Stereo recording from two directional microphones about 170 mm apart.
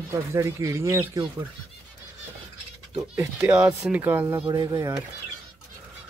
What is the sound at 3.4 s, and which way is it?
Speech, 5° right (ahead or behind).